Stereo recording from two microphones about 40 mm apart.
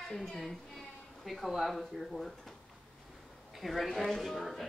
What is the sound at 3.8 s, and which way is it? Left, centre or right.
Speech, centre.